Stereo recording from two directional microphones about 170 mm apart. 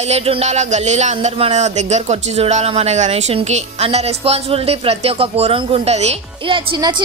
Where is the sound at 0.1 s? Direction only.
35° right (ahead or behind).